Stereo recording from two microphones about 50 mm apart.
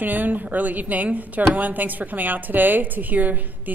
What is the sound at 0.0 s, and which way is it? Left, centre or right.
A woman's voice, right.